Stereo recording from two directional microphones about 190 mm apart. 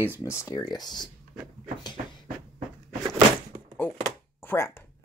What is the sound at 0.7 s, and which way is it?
Speech, 20° left (ahead or behind).